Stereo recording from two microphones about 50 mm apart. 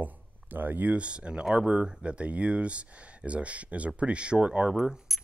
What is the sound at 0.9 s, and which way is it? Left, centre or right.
Speech, right.